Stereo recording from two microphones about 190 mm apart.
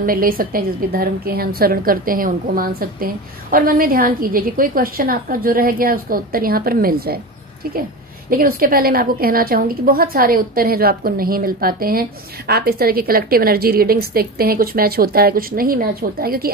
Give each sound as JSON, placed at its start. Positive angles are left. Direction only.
{"t": 0.0, "sound": "a woman's voice", "side_deg": -50}
{"t": 8.3, "sound": "a woman's voice", "side_deg": -50}